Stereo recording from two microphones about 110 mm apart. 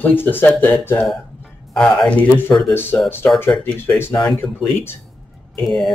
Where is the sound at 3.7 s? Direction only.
20° left (ahead or behind).